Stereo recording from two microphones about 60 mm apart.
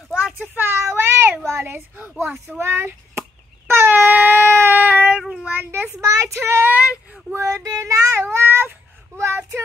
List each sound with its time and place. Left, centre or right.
0.1 s child singing: centre
0.6 s child singing: right
1.6 s a child's voice: right
2.6 s a sound: right
4.7 s child singing: right
5.5 s a child's voice: right
5.9 s child singing: right
6.4 s speech: right
6.7 s child singing: right
7.3 s child singing: right
9.1 s a sound: right